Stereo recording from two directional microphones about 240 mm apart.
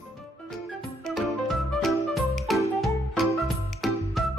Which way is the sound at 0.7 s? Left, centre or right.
Centre.